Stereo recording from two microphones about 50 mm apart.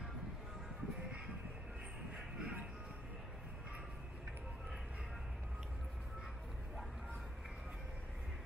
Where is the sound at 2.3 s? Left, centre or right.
Right.